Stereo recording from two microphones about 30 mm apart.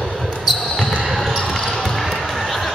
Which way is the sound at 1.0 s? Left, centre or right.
Centre.